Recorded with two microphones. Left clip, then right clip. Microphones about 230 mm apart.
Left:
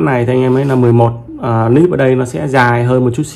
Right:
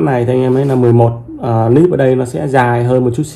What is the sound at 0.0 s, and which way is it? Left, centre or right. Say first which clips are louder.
Speech: even; left.